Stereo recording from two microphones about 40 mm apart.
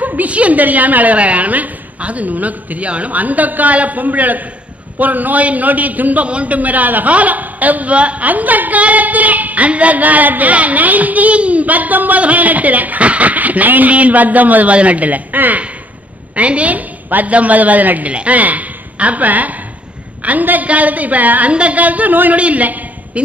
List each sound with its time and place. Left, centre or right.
0.0 s a woman's voice: right
6.2 s speech: right
16.3 s a woman's voice: right